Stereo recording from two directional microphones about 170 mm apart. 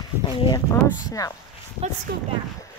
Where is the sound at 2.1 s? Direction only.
90° right.